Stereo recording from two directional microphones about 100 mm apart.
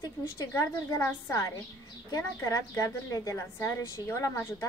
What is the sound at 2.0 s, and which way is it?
A woman's voice, 35° left (ahead or behind).